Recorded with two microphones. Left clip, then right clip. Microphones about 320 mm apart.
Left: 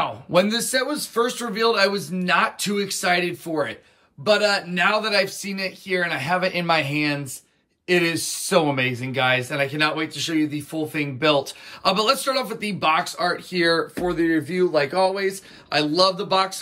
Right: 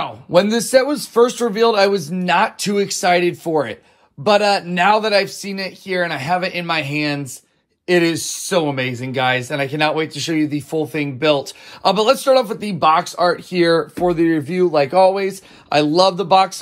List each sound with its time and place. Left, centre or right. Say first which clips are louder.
0.0 s speech: right 4 dB; centre